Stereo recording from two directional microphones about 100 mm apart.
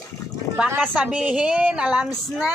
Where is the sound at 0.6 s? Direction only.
10° right (ahead or behind).